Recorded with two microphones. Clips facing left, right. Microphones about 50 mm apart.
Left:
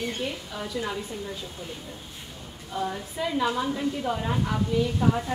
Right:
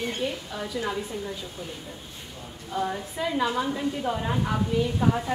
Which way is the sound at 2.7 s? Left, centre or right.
Centre.